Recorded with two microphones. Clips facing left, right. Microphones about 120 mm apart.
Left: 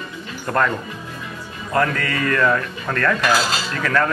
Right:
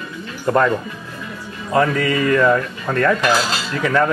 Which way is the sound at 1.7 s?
15° right (ahead or behind).